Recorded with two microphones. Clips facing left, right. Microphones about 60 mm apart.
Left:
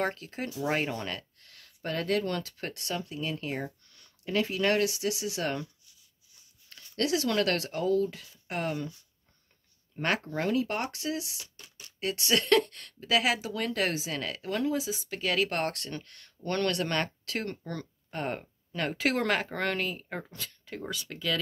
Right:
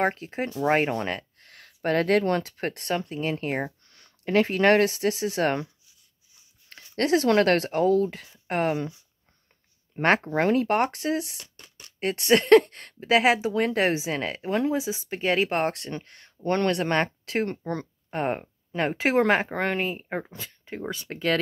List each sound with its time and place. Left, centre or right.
0.0 s speech: right
0.5 s speech: right
1.8 s speech: right
6.8 s speech: right
9.9 s speech: right